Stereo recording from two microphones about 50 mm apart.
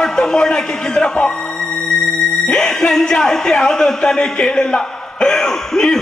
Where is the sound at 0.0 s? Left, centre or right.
Centre.